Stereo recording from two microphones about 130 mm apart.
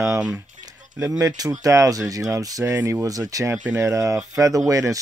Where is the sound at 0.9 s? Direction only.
25° right (ahead or behind).